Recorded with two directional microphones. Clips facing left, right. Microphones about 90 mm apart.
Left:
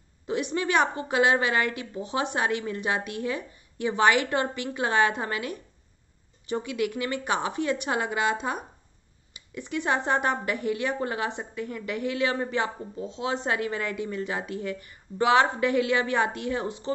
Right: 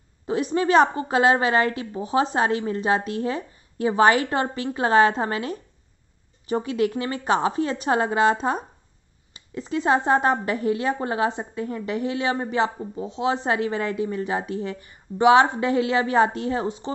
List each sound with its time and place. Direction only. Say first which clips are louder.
0.3 s a woman's voice: right 6 dB; 30° right (ahead or behind)